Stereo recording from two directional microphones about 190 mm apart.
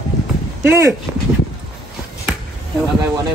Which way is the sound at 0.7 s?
15° right (ahead or behind).